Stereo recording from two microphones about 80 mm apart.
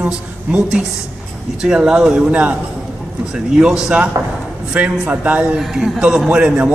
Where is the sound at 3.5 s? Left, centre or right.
Centre.